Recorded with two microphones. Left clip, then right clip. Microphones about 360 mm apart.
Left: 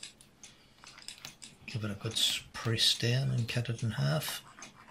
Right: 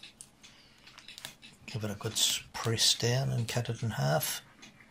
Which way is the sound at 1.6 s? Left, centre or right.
Centre.